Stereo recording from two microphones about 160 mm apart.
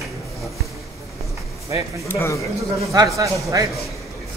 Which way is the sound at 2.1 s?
20° left (ahead or behind).